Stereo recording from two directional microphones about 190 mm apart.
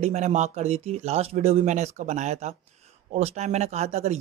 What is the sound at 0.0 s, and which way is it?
Speech, 35° right (ahead or behind).